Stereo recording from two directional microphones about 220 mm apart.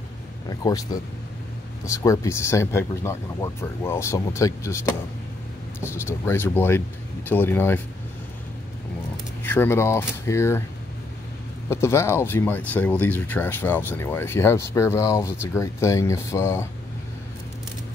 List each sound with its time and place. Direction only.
0.5 s speech: 15° left (ahead or behind)
2.0 s speech: 10° left (ahead or behind)
9.4 s speech: 10° left (ahead or behind)
11.7 s speech: 10° left (ahead or behind)